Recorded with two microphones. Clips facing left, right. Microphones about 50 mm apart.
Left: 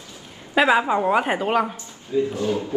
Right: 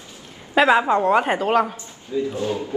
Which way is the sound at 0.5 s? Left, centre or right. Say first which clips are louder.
Right 2 dB; centre.